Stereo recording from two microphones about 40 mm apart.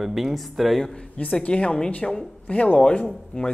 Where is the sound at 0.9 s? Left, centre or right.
Left.